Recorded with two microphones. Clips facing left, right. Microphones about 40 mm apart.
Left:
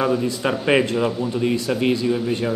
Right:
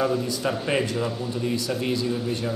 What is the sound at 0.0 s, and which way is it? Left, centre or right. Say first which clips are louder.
Speech: left 4 dB; left.